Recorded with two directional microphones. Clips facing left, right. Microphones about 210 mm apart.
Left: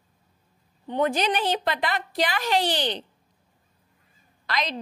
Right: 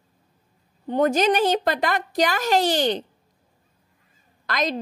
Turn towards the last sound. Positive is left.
turn(degrees=-45)  # may be behind; listen again after turning